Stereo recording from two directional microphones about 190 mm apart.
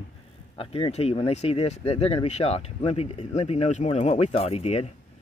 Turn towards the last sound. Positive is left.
turn(degrees=35)  # may be behind; listen again after turning